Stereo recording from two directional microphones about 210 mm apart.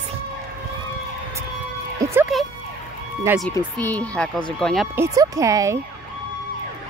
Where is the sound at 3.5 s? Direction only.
10° left (ahead or behind).